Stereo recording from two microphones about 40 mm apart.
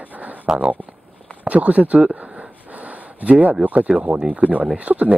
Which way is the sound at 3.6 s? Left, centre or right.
Right.